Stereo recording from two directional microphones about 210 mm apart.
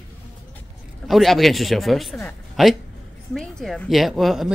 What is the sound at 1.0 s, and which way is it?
Speech, centre (ahead or behind).